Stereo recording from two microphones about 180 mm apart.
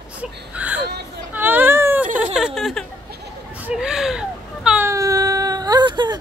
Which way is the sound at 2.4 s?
Centre (ahead or behind).